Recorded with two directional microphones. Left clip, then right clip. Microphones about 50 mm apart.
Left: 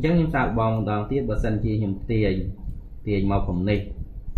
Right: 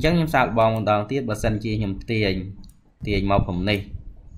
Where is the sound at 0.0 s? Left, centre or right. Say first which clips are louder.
Right 3 dB; right.